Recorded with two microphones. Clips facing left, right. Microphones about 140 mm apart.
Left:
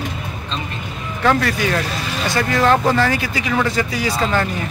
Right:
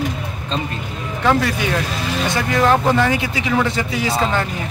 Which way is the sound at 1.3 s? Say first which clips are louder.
Even; 10° right (ahead or behind).